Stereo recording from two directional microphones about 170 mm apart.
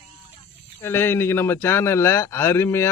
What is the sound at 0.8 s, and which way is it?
Speech, 15° left (ahead or behind).